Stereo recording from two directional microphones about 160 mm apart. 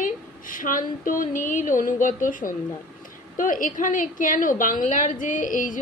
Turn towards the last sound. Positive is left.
turn(degrees=55)  # may be behind; listen again after turning